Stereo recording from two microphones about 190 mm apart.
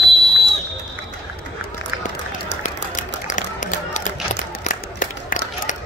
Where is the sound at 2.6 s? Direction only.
40° left (ahead or behind).